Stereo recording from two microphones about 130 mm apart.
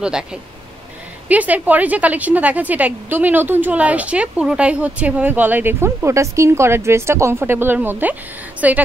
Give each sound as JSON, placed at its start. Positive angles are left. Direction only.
{"t": 0.0, "sound": "a woman's voice", "side_deg": -5}